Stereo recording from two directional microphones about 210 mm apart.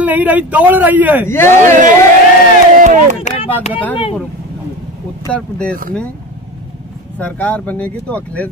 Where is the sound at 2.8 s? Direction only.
35° right (ahead or behind).